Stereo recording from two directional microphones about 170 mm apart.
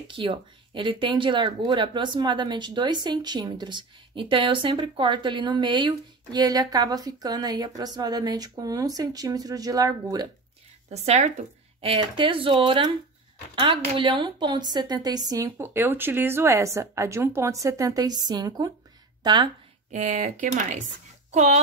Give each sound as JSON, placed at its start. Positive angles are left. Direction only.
{"t": 0.1, "sound": "speech", "side_deg": -30}
{"t": 10.9, "sound": "speech", "side_deg": -40}
{"t": 19.9, "sound": "speech", "side_deg": -45}